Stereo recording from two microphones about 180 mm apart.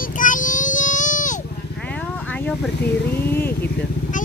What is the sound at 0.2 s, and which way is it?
Child singing, 45° left (ahead or behind).